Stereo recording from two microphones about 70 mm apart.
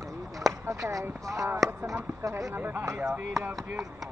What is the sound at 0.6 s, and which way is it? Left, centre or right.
Speech, right.